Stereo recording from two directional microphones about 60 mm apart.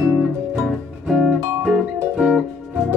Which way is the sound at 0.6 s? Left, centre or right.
Centre.